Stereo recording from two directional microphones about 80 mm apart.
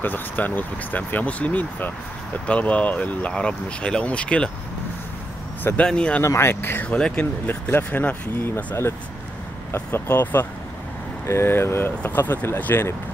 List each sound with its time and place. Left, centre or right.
0.0 s speech: left
5.8 s speech: centre
6.2 s speech: left
6.9 s speech: centre
7.4 s speech: left
9.8 s speech: left